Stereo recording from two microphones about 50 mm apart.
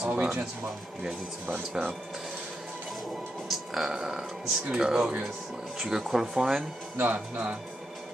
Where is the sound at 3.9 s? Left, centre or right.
Centre.